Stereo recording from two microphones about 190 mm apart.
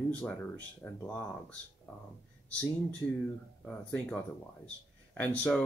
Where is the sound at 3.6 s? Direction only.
5° left (ahead or behind).